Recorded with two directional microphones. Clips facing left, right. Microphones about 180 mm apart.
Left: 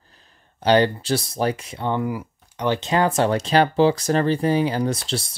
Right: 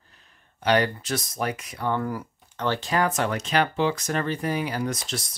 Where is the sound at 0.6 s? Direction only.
30° left (ahead or behind).